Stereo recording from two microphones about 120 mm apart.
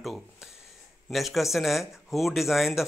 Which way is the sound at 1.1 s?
Centre (ahead or behind).